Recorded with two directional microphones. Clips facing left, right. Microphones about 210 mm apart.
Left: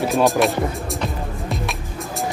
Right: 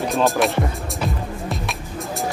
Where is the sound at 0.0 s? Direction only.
Centre (ahead or behind).